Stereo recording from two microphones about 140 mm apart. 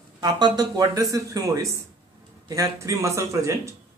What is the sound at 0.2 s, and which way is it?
A man's voice, 30° right (ahead or behind).